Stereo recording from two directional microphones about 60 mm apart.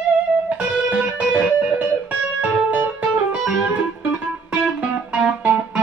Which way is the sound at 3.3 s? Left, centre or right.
Centre.